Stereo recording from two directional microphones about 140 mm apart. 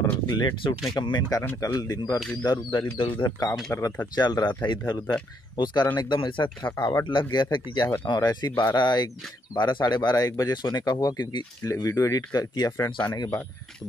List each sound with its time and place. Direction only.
0.3 s speech: 35° left (ahead or behind)
1.4 s speech: 15° left (ahead or behind)
1.7 s speech: 25° left (ahead or behind)